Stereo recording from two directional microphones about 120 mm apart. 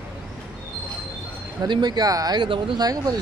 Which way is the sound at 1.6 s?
35° right (ahead or behind).